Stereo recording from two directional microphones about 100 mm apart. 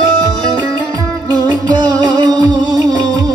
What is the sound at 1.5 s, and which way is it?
Music, 45° right (ahead or behind).